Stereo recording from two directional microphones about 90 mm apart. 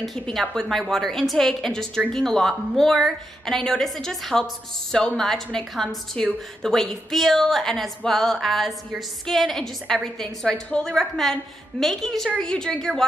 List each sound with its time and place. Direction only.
0.0 s a woman's voice: centre (ahead or behind)